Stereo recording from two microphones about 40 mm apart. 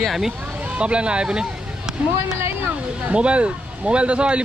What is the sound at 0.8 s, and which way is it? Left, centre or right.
Speech, right.